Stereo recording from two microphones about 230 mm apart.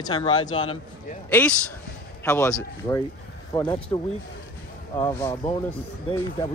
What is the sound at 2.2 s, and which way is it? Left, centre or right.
Speech, centre.